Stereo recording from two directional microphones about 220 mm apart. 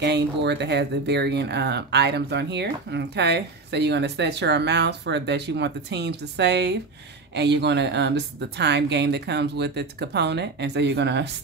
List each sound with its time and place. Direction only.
0.0 s speech: 50° right (ahead or behind)